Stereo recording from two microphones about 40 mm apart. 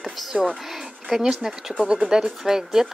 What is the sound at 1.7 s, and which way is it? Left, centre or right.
Speech, right.